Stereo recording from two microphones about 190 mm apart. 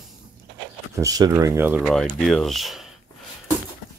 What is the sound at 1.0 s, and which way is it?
Speech, 20° right (ahead or behind).